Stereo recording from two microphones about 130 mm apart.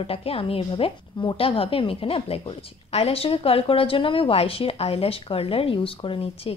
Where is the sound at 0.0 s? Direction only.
50° left (ahead or behind).